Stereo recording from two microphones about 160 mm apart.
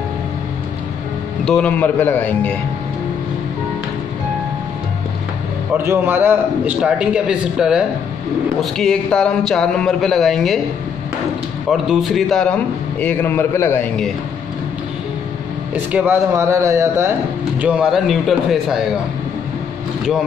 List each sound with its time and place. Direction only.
1.4 s a man's voice: 5° left (ahead or behind)
5.8 s a man's voice: 15° right (ahead or behind); by 10.6 s centre (ahead or behind)
11.7 s a man's voice: centre (ahead or behind); by 13.8 s 15° left (ahead or behind)
15.7 s a man's voice: 10° right (ahead or behind)
17.6 s a man's voice: 5° right (ahead or behind)